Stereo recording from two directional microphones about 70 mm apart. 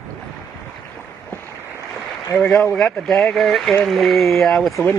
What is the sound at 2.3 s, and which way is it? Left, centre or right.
Speech, centre.